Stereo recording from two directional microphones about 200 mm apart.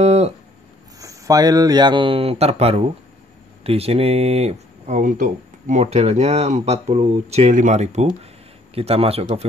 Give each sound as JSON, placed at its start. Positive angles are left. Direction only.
{"t": 0.0, "sound": "speech", "side_deg": -30}
{"t": 0.9, "sound": "speech", "side_deg": -15}